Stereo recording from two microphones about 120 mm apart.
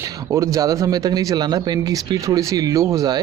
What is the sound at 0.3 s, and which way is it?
Speech, 25° right (ahead or behind).